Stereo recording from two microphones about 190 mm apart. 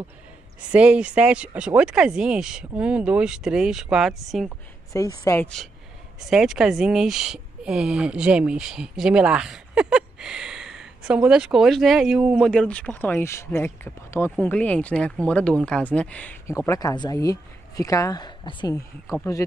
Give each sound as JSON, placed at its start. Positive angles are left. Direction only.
{"t": 0.7, "sound": "speech", "side_deg": -5}
{"t": 5.2, "sound": "speech", "side_deg": 15}
{"t": 6.3, "sound": "speech", "side_deg": -5}